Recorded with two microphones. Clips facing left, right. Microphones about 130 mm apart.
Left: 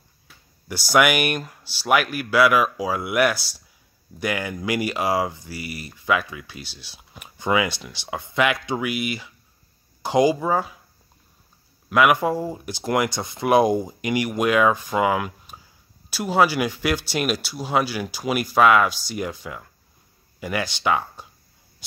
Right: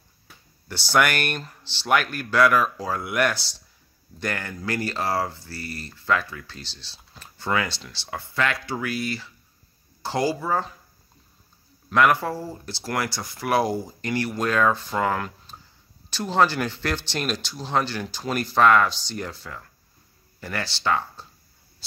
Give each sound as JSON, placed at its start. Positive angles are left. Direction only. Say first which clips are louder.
{"t": 0.7, "sound": "speech", "louder": "left 3 dB", "side_deg": 10}
{"t": 11.9, "sound": "speech", "louder": "left 2 dB", "side_deg": 5}